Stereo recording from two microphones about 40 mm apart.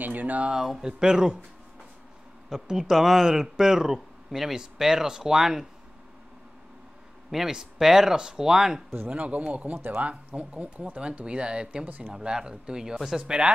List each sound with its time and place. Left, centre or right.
0.0 s speech: right
0.5 s speech: centre
2.5 s speech: centre
7.2 s speech: centre
9.1 s speech: right
11.8 s speech: right
12.1 s speech: centre